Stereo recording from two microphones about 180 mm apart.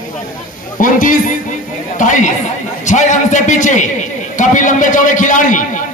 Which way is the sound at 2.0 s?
45° left (ahead or behind).